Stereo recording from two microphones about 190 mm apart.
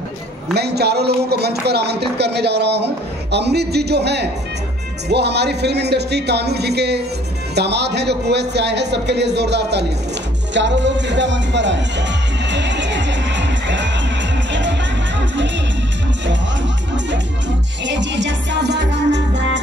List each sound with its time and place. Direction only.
0.6 s speech: 60° right (ahead or behind)
12.4 s music: 70° right (ahead or behind)
17.8 s music: 70° right (ahead or behind)